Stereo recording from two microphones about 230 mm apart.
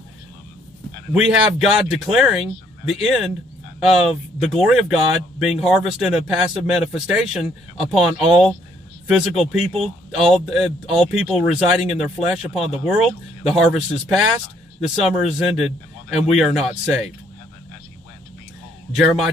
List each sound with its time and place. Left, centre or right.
1.1 s speech: centre
18.9 s speech: centre